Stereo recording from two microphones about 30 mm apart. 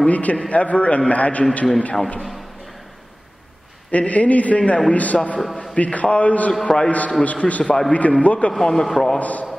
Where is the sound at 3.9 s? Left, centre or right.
Left.